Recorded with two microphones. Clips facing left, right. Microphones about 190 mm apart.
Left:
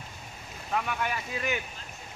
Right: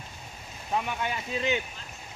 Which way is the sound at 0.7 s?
20° right (ahead or behind).